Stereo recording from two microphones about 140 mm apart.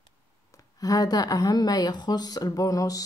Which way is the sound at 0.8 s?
25° left (ahead or behind).